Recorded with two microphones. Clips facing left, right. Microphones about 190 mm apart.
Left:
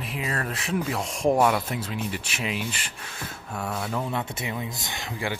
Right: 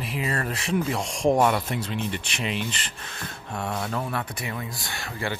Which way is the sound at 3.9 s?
15° left (ahead or behind).